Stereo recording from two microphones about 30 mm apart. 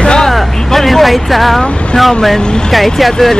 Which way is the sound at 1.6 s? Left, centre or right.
Left.